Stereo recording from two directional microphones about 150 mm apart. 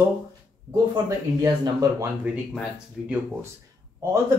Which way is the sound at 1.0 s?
25° right (ahead or behind).